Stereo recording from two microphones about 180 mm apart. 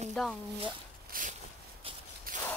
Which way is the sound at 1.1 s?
50° right (ahead or behind).